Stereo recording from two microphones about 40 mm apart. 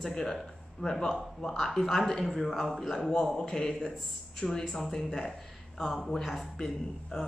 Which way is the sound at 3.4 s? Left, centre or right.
Centre.